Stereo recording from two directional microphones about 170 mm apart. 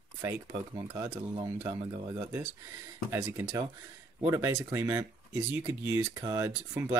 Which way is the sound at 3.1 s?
15° right (ahead or behind).